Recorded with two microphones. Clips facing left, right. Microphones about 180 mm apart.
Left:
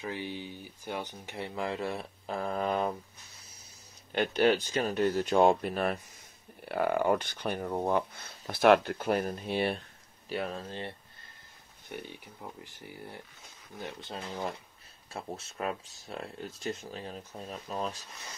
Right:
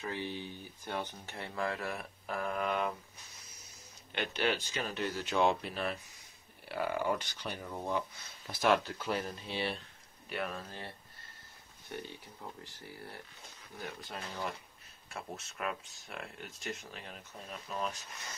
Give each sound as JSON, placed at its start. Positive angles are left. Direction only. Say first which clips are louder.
{"t": 0.0, "sound": "speech", "louder": "left 2 dB", "side_deg": 15}
{"t": 4.1, "sound": "speech", "louder": "left 8 dB", "side_deg": 40}
{"t": 10.3, "sound": "speech", "louder": "left 4 dB", "side_deg": 30}